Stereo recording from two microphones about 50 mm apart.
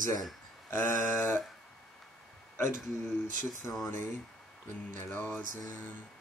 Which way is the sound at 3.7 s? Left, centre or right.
Left.